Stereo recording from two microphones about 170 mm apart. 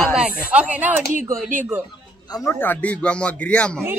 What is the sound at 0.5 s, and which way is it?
Speech, 10° right (ahead or behind).